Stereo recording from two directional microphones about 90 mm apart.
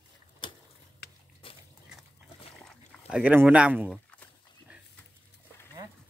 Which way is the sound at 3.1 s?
15° right (ahead or behind).